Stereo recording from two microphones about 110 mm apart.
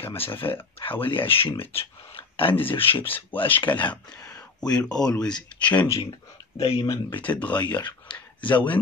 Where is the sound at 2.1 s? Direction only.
50° left (ahead or behind).